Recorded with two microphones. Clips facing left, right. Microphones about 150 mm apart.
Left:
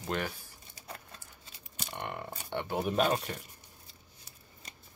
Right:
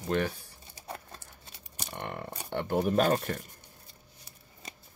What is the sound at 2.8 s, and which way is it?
Speech, 40° right (ahead or behind).